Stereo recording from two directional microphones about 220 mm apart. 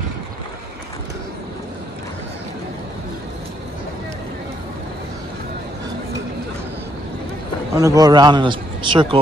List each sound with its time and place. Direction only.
7.7 s a man's voice: 15° right (ahead or behind)